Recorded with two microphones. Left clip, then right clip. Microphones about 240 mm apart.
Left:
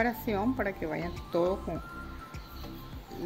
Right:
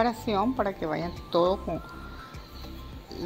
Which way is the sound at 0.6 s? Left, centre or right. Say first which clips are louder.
Right 4 dB; centre.